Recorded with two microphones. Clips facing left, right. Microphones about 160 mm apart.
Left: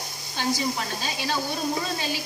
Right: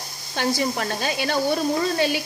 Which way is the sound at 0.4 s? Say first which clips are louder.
Right 4 dB; 60° right (ahead or behind).